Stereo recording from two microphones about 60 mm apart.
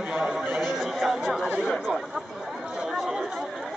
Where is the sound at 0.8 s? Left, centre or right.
Centre.